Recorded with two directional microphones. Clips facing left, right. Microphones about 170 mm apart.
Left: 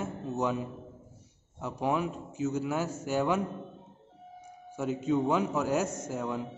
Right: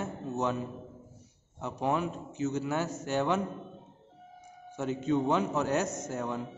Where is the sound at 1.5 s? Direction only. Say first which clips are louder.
Even; 5° left (ahead or behind).